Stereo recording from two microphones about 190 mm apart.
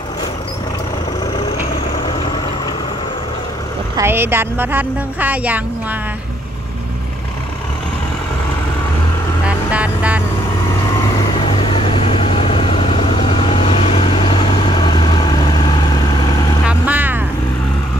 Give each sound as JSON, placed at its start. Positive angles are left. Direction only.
{"t": 3.9, "sound": "speech", "side_deg": -15}
{"t": 9.7, "sound": "vehicle", "side_deg": -5}
{"t": 11.3, "sound": "vehicle", "side_deg": 30}
{"t": 16.6, "sound": "vehicle", "side_deg": -10}